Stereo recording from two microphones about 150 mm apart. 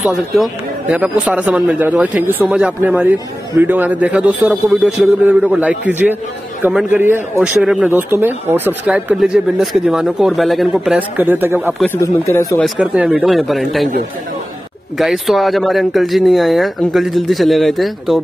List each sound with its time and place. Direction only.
0.0 s a man's voice: centre (ahead or behind)
12.0 s speech: 20° left (ahead or behind)
12.5 s speech: 5° right (ahead or behind)
15.0 s speech: centre (ahead or behind)